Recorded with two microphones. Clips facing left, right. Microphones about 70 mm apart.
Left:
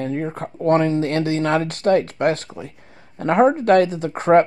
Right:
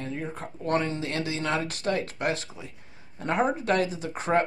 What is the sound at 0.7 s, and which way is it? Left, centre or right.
Speech, left.